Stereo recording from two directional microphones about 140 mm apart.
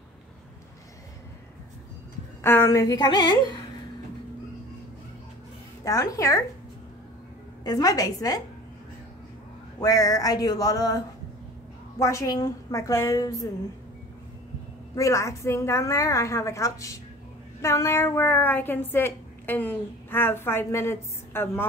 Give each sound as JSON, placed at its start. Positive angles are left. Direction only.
{"t": 2.4, "sound": "a woman's voice", "side_deg": 20}
{"t": 5.9, "sound": "a woman's voice", "side_deg": 25}
{"t": 7.6, "sound": "a woman's voice", "side_deg": 25}
{"t": 9.8, "sound": "a woman's voice", "side_deg": 25}
{"t": 15.0, "sound": "a woman's voice", "side_deg": 20}